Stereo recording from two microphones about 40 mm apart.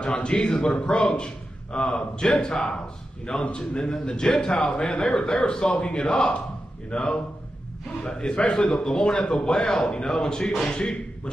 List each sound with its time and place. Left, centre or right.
0.0 s a man's voice: left
0.5 s a man's voice: centre